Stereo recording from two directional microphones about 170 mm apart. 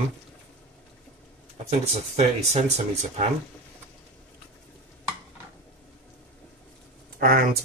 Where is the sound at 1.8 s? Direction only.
40° right (ahead or behind).